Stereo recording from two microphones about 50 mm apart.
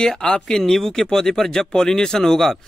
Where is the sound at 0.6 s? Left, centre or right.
Centre.